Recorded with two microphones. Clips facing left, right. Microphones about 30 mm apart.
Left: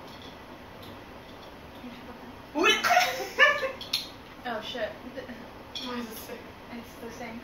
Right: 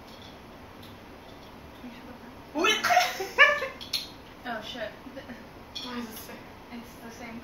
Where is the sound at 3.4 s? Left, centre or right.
Centre.